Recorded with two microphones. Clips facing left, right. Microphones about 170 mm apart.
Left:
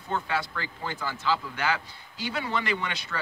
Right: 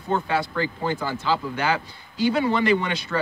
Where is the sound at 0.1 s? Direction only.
30° right (ahead or behind).